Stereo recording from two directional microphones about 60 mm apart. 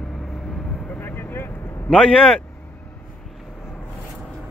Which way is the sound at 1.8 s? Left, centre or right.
Centre.